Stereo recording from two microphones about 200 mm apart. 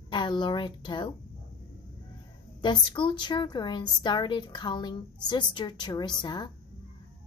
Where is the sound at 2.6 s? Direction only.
25° left (ahead or behind).